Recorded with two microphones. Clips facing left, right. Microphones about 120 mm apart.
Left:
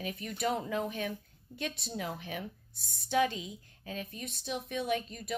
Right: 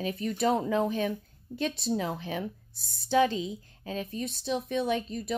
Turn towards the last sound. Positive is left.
turn(degrees=-30)  # may be behind; listen again after turning